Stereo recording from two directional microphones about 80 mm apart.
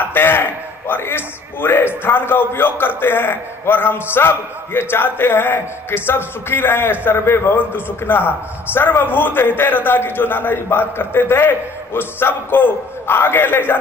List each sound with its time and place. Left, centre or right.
0.0 s a man's voice: left